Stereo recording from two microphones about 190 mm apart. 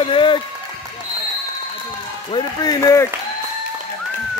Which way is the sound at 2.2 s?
25° left (ahead or behind).